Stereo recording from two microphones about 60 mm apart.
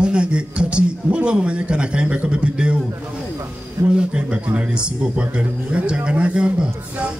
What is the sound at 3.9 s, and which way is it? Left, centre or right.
Speech, centre.